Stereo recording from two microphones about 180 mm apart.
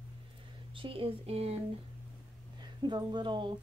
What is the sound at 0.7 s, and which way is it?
Speech, 30° right (ahead or behind).